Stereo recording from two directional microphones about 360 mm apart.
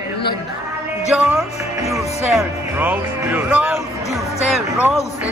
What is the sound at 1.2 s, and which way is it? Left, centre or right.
Speech, centre.